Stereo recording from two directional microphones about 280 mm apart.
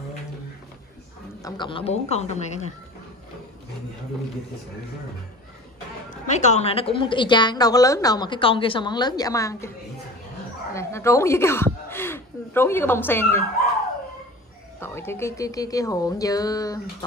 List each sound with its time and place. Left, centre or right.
1.4 s a woman's voice: centre
6.0 s a woman's voice: left
10.7 s speech: centre
14.8 s a woman's voice: centre